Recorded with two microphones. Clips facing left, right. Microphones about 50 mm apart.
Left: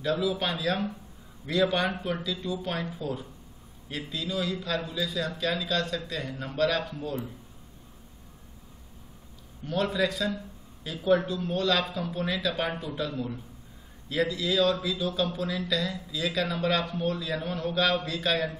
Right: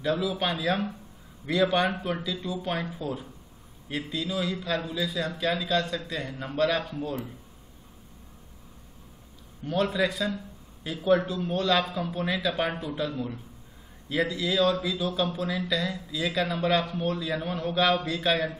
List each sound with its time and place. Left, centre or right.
0.0 s speech: centre
9.7 s speech: centre